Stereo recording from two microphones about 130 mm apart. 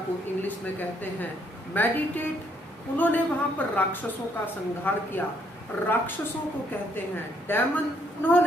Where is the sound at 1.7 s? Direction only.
15° left (ahead or behind).